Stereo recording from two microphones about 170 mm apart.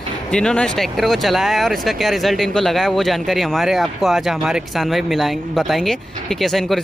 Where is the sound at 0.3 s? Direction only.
5° left (ahead or behind).